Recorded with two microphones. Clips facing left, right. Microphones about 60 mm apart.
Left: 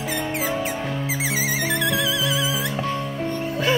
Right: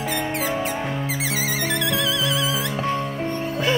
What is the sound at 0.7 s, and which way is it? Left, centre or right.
Music, centre.